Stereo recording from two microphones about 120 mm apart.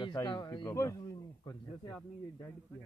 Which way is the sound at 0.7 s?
25° left (ahead or behind).